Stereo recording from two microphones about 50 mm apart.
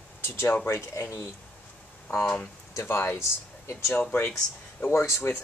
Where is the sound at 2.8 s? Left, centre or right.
Left.